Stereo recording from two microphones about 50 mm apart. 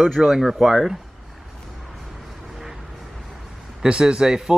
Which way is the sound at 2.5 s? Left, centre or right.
Centre.